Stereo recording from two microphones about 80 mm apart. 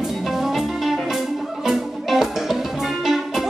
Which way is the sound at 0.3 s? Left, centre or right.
Centre.